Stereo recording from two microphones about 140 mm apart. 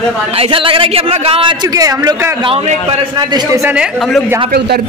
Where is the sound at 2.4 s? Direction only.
45° right (ahead or behind).